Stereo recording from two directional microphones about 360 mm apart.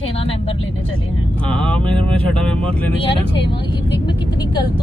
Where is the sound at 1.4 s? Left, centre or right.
Centre.